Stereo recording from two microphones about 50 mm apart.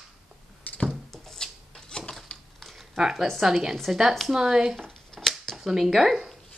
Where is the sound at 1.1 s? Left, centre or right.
Centre.